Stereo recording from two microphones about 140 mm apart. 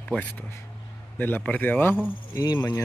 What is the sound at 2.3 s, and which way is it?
Speech, 30° left (ahead or behind).